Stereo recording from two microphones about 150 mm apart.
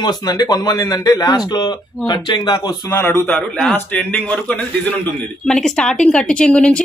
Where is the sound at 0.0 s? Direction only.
25° left (ahead or behind).